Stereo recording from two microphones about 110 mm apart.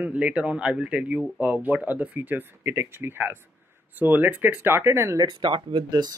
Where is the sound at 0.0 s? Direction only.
10° right (ahead or behind).